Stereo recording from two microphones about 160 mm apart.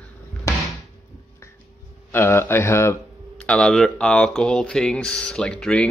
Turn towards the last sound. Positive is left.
turn(degrees=5)  # may be behind; listen again after turning